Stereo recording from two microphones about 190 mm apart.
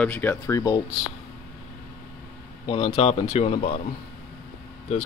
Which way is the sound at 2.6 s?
30° left (ahead or behind).